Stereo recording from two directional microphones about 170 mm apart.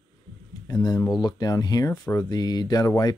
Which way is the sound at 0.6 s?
20° left (ahead or behind).